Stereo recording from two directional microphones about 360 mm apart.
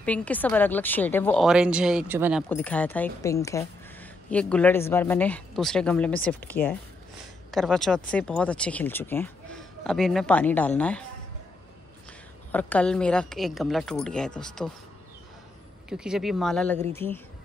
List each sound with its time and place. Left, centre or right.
0.0 s speech: centre
12.4 s speech: centre
15.9 s speech: centre